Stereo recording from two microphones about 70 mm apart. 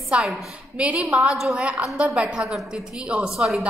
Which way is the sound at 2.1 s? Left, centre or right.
Centre.